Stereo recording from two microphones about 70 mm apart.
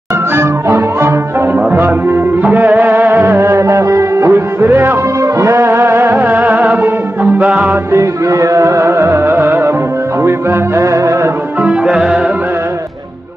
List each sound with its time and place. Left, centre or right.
0.4 s music: right
2.4 s music: right
5.2 s music: right
7.9 s music: right
10.8 s music: right
11.6 s music: centre